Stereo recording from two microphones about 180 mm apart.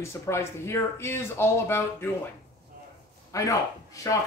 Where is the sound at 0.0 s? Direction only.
15° left (ahead or behind).